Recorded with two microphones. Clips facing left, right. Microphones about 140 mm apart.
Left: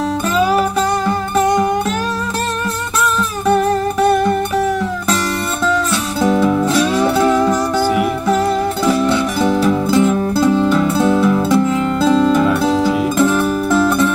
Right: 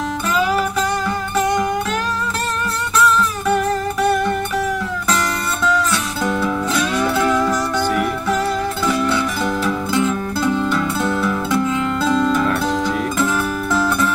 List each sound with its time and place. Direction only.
6.2 s music: 20° left (ahead or behind)
8.8 s music: 25° left (ahead or behind)
12.4 s music: 5° left (ahead or behind)
13.2 s music: 25° left (ahead or behind)